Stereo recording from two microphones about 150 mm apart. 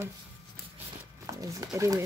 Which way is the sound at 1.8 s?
20° right (ahead or behind).